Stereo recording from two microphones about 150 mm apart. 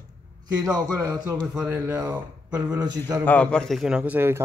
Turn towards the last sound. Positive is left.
turn(degrees=-15)  # may be behind; listen again after turning